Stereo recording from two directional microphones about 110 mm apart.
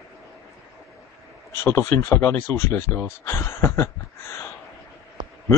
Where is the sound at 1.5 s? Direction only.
25° left (ahead or behind).